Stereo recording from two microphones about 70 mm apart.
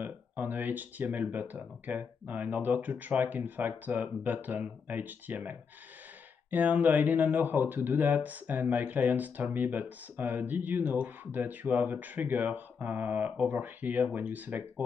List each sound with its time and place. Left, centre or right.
0.0 s speech: right